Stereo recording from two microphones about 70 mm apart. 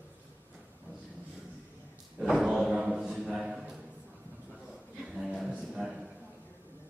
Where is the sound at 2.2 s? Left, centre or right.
Centre.